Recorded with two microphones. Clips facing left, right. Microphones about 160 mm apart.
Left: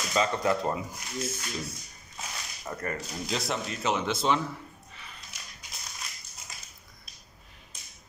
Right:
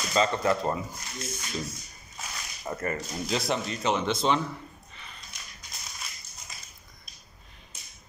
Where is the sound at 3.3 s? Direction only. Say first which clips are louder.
Right 3 dB; centre (ahead or behind).